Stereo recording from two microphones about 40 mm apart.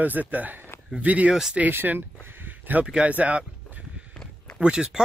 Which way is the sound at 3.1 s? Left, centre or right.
Right.